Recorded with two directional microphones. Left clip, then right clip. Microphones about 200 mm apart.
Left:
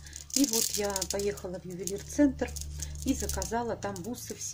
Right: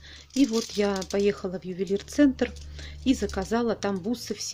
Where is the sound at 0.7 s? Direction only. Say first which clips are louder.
Right 6 dB; 40° right (ahead or behind).